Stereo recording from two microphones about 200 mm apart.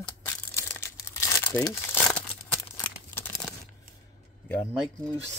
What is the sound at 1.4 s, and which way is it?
Crumpling, 10° left (ahead or behind).